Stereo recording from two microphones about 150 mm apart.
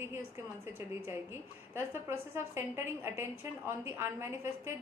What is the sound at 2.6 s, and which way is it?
A woman's voice, 15° right (ahead or behind).